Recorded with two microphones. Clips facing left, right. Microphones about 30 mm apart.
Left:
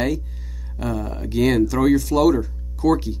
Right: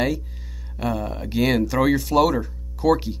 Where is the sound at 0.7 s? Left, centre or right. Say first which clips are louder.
Right 1 dB; centre.